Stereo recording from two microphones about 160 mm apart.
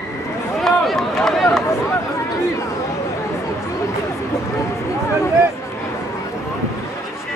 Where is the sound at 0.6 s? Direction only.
Centre (ahead or behind).